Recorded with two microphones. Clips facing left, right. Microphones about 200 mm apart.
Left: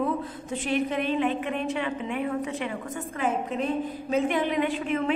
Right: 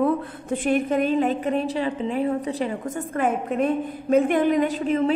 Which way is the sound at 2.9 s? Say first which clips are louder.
Right 4 dB; 50° right (ahead or behind).